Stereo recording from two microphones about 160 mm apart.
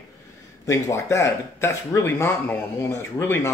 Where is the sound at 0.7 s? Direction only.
20° left (ahead or behind).